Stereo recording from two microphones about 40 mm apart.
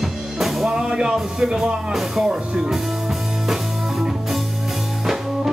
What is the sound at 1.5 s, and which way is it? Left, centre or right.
Speech, centre.